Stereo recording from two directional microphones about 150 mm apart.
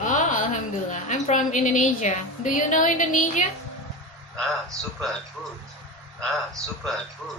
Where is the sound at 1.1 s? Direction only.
55° left (ahead or behind).